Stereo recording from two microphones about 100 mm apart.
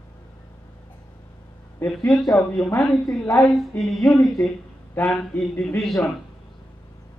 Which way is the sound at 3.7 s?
15° left (ahead or behind).